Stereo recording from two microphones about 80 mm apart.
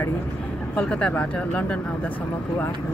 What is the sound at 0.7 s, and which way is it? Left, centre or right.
Speech, centre.